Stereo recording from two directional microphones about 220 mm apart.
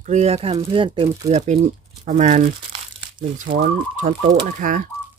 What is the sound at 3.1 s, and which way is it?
Speech, 35° right (ahead or behind).